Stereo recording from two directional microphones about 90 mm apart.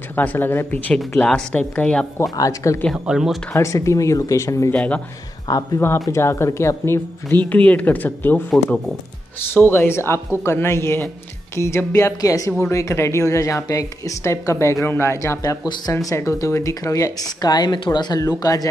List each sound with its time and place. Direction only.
0.1 s speech: 20° left (ahead or behind)
2.3 s speech: 40° left (ahead or behind)
2.9 s speech: 5° right (ahead or behind)
3.5 s speech: 35° left (ahead or behind)
4.7 s speech: 15° left (ahead or behind)
5.5 s speech: 40° left (ahead or behind)
7.4 s speech: 15° left (ahead or behind)
9.5 s speech: 25° left (ahead or behind)
15.4 s speech: 45° left (ahead or behind)
17.4 s speech: 50° left (ahead or behind)
18.2 s speech: 40° left (ahead or behind)